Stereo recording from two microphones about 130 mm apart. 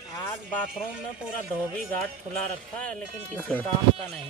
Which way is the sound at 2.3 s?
10° left (ahead or behind).